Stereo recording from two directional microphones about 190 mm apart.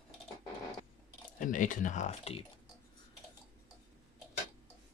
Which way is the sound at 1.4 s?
45° left (ahead or behind).